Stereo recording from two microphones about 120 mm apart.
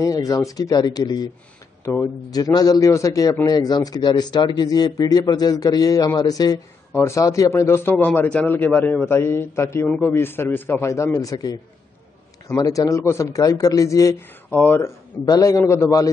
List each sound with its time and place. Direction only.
0.0 s a man's voice: 30° left (ahead or behind)
14.5 s speech: 15° left (ahead or behind)
15.2 s a man's voice: 30° left (ahead or behind)